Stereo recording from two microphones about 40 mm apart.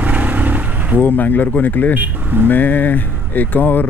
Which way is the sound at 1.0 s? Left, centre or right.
Left.